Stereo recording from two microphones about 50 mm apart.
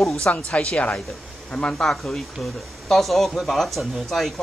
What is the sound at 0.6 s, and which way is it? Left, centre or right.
Speech, left.